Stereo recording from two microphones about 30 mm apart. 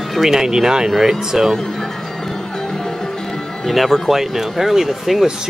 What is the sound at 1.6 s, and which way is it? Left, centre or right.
Music, centre.